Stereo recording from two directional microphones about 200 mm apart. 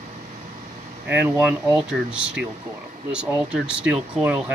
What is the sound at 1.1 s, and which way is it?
Speech, 10° right (ahead or behind).